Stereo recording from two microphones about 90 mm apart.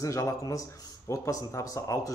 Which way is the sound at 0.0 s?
35° left (ahead or behind).